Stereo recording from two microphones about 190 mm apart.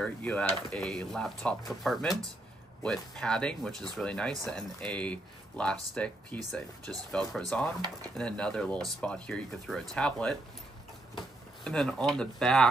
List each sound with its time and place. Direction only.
0.0 s speech: 5° left (ahead or behind)
11.6 s speech: 5° left (ahead or behind)